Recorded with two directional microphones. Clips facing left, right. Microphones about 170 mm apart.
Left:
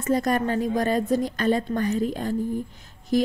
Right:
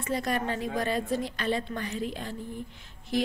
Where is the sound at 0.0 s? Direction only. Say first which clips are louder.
Left 7 dB; 45° left (ahead or behind).